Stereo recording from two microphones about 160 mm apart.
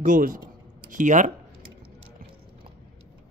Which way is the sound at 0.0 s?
60° right (ahead or behind).